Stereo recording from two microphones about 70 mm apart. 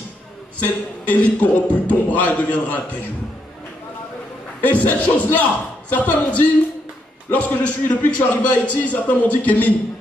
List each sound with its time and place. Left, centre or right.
0.6 s a man's voice: left
4.6 s a man's voice: left